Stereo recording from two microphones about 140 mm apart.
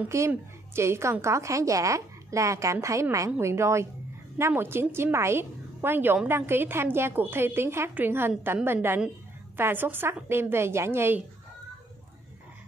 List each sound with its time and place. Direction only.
0.1 s a woman's voice: 20° right (ahead or behind)